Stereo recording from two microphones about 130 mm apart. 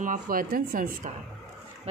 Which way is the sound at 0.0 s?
90° right.